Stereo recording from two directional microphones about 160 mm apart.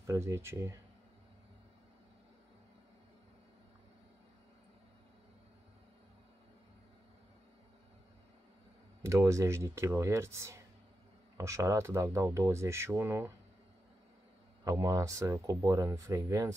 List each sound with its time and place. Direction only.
0.0 s speech: 20° right (ahead or behind)
9.0 s speech: 20° right (ahead or behind)
14.6 s speech: 20° right (ahead or behind)